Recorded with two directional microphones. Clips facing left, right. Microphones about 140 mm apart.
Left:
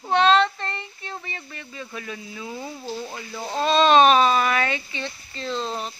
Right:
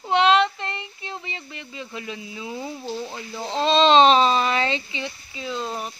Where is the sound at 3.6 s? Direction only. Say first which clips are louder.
Right 1 dB; 20° right (ahead or behind).